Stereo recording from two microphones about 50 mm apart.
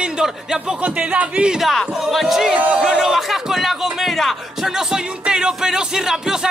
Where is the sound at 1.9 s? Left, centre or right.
Centre.